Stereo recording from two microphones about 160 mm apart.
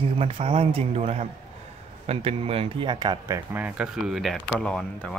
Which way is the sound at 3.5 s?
10° right (ahead or behind).